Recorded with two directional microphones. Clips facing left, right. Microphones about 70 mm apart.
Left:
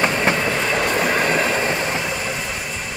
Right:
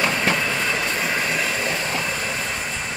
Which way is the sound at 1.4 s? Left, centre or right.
Left.